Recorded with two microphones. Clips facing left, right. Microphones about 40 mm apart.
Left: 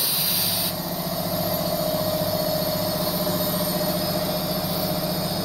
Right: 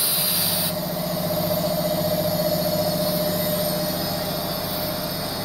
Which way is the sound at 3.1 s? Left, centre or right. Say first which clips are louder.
Right 1 dB; left.